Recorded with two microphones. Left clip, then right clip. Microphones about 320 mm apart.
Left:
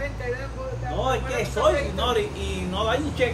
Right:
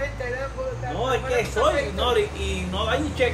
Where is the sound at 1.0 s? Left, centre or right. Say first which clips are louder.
Right 2 dB; centre.